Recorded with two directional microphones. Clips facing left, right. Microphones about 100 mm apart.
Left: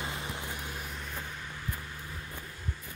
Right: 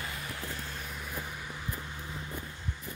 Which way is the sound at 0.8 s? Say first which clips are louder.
Even; centre (ahead or behind).